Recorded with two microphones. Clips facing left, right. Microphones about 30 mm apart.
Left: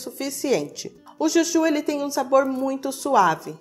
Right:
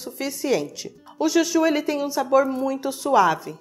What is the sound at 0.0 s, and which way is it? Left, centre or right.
Speech, centre.